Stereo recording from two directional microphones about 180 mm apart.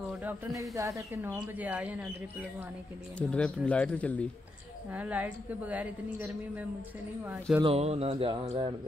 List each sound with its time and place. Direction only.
0.2 s speech: 10° right (ahead or behind)
3.2 s speech: 5° left (ahead or behind)
4.9 s speech: 10° right (ahead or behind)
7.6 s speech: 35° right (ahead or behind)